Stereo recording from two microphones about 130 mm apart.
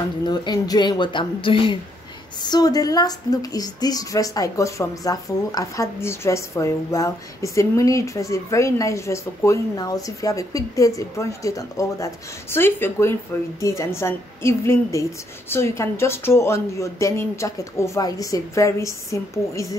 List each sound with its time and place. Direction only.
0.2 s speech: 35° left (ahead or behind)
2.4 s a woman's voice: 30° left (ahead or behind)